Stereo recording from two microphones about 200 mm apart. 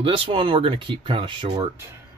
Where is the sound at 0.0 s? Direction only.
25° right (ahead or behind).